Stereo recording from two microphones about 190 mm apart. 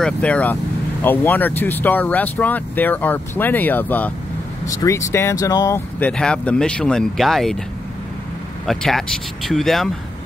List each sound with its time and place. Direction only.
0.0 s speech: 5° left (ahead or behind)
5.9 s speech: 5° left (ahead or behind)
8.6 s speech: centre (ahead or behind)